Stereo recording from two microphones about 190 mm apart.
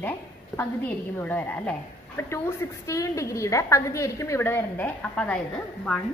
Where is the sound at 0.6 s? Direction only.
10° left (ahead or behind).